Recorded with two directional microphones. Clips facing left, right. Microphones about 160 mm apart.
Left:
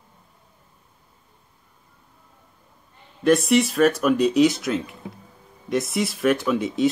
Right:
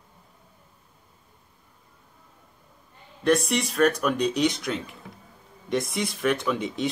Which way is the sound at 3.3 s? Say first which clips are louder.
Left 5 dB; centre (ahead or behind).